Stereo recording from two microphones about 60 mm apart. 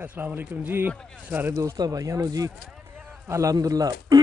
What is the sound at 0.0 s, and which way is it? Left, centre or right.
Speech, right.